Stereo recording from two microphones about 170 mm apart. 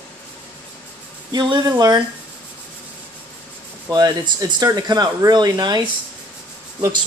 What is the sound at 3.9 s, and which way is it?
Speech, 25° right (ahead or behind).